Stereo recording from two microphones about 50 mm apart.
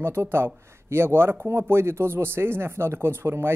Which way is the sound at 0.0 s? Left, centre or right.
Right.